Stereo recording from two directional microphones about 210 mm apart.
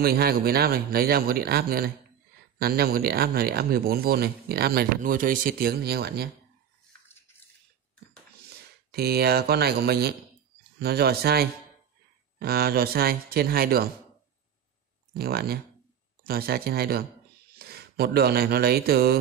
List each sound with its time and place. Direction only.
0.0 s speech: 45° right (ahead or behind)
8.5 s speech: 50° right (ahead or behind)
15.1 s a man's voice: 45° right (ahead or behind)